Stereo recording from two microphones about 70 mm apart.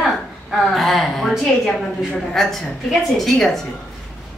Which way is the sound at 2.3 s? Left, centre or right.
Centre.